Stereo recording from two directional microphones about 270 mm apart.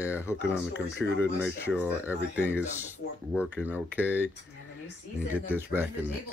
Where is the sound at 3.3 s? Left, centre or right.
Centre.